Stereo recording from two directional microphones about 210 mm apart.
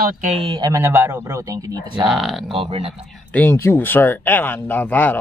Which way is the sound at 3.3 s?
10° left (ahead or behind).